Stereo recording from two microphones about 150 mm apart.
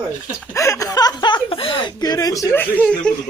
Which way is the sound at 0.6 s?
20° left (ahead or behind).